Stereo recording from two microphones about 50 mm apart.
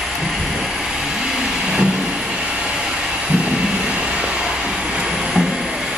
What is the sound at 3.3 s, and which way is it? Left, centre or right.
Vehicle, centre.